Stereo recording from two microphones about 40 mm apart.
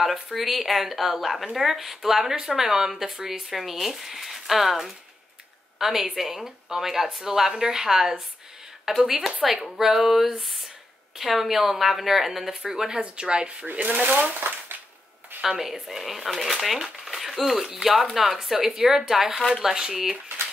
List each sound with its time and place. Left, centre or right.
0.0 s a woman's voice: centre
12.7 s a woman's voice: centre
13.7 s speech: right
15.4 s a woman's voice: centre
19.7 s a woman's voice: centre